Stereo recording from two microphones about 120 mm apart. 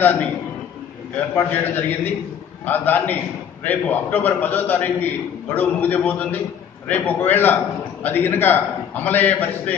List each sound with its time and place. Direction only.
1.1 s a man's voice: 15° left (ahead or behind)